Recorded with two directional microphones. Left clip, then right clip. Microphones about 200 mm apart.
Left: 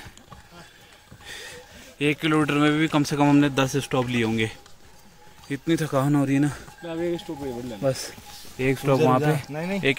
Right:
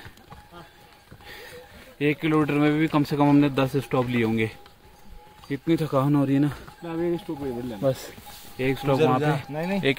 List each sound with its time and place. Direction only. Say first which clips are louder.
1.2 s a sound: left 4 dB; centre (ahead or behind)
2.0 s speech: left 1 dB; centre (ahead or behind)
6.8 s speech: right 1 dB; 30° right (ahead or behind)
7.8 s speech: even; 5° right (ahead or behind)
8.5 s speech: left 1 dB; 35° left (ahead or behind)
9.5 s speech: right 1 dB; centre (ahead or behind)